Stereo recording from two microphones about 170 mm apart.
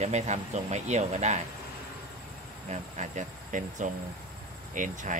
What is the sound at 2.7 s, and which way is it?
Speech, 45° right (ahead or behind).